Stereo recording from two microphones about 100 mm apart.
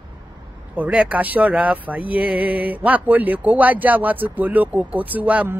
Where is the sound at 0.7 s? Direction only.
15° right (ahead or behind).